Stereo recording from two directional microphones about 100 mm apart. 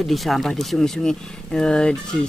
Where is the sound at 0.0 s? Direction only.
Centre (ahead or behind).